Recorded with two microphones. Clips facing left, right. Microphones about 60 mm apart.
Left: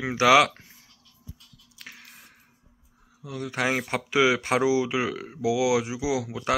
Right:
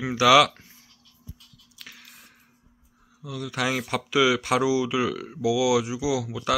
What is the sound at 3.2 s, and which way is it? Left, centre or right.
Speech, left.